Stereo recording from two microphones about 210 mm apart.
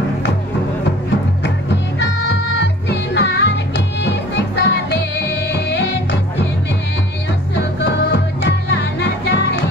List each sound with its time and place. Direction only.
1.4 s music: 55° left (ahead or behind)
7.5 s music: 55° left (ahead or behind)